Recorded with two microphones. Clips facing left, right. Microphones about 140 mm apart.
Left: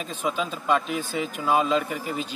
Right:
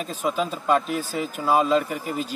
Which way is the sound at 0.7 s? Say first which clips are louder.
Right 2 dB; 45° right (ahead or behind).